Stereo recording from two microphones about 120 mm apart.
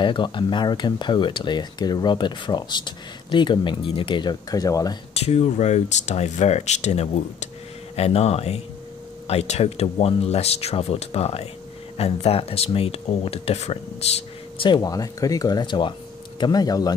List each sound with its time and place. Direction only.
0.0 s speech: 45° left (ahead or behind)
5.1 s speech: 60° left (ahead or behind)
14.6 s speech: 35° left (ahead or behind)